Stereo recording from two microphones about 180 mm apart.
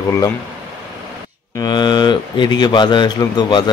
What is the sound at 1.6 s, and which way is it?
Speech, 25° left (ahead or behind).